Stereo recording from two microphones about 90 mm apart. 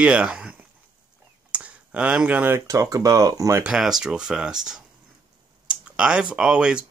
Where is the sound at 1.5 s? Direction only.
15° right (ahead or behind).